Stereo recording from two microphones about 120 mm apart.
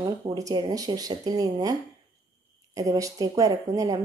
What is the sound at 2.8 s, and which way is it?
Speech, 25° right (ahead or behind).